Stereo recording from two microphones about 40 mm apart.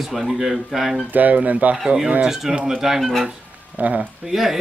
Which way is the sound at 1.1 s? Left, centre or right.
Right.